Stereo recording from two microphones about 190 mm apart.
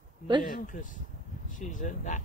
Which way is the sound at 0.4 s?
45° left (ahead or behind).